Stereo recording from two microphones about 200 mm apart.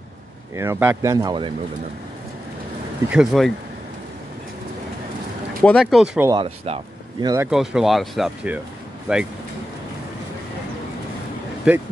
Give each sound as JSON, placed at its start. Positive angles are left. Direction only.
{"t": 0.6, "sound": "speech", "side_deg": -10}
{"t": 3.1, "sound": "speech", "side_deg": 0}
{"t": 5.6, "sound": "speech", "side_deg": 0}
{"t": 6.3, "sound": "speech", "side_deg": -30}
{"t": 7.5, "sound": "speech", "side_deg": 0}
{"t": 11.7, "sound": "speech", "side_deg": -5}